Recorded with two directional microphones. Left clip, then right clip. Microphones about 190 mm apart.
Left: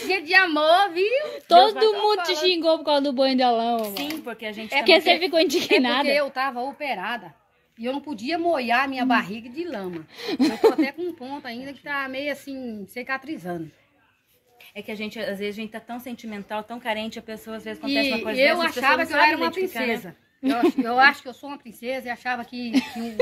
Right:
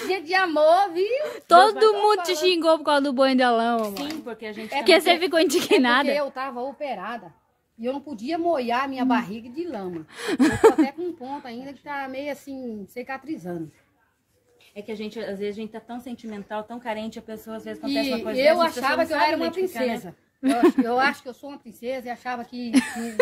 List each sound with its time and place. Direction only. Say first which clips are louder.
0.0 s a woman's voice: left 4 dB; 15° right (ahead or behind)
3.9 s speech: left 2 dB; 40° left (ahead or behind)
4.6 s a woman's voice: left 1 dB; 10° right (ahead or behind)
14.8 s speech: left 1 dB; 35° left (ahead or behind)
16.3 s a woman's voice: left 1 dB; 15° left (ahead or behind); by 17.8 s 10° right (ahead or behind)
18.5 s a woman's voice: even; 45° right (ahead or behind)
20.8 s a woman's voice: left 4 dB; 20° right (ahead or behind); by 22.7 s 5° right (ahead or behind)
22.7 s a woman's voice: right 2 dB; 20° right (ahead or behind)